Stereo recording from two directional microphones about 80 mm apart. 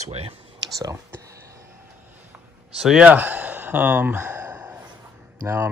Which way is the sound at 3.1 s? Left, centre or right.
Right.